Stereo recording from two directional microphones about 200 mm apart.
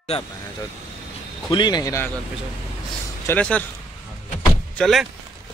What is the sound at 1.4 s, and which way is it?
Speech, 20° left (ahead or behind).